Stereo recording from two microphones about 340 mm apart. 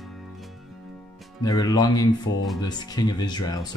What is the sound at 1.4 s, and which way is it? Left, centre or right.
Speech, centre.